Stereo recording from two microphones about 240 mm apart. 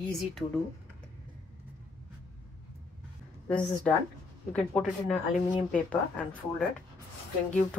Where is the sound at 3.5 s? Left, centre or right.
Centre.